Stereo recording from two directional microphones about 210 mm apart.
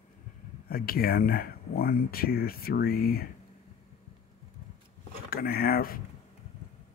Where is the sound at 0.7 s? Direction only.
45° left (ahead or behind).